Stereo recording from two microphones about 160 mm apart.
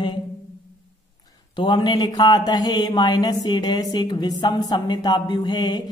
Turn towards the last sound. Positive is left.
turn(degrees=25)  # may be behind; listen again after turning